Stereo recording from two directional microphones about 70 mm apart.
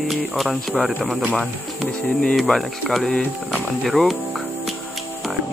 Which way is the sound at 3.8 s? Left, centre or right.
Centre.